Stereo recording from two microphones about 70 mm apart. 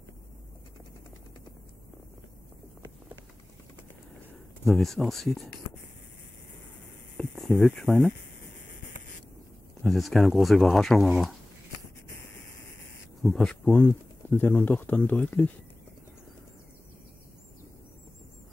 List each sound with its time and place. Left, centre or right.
4.6 s speech: centre
7.2 s a sound: centre
7.8 s speech: centre
9.8 s speech: centre
13.2 s speech: centre
14.3 s speech: left